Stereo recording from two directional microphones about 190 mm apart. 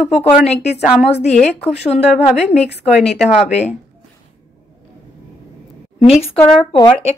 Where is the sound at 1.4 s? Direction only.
35° left (ahead or behind).